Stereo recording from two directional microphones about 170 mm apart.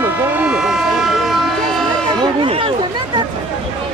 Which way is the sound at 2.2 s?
30° right (ahead or behind).